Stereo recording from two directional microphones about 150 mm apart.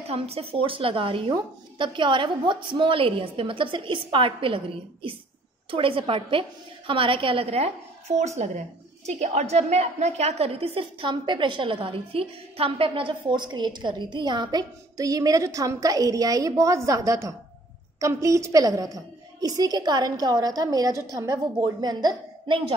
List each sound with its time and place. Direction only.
0.0 s a woman's voice: 40° right (ahead or behind)